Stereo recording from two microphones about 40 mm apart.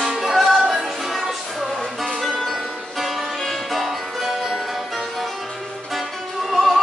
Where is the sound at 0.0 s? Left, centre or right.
Centre.